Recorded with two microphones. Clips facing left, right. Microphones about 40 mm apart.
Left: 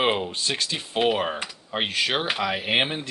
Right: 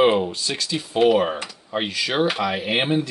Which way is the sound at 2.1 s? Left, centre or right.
Centre.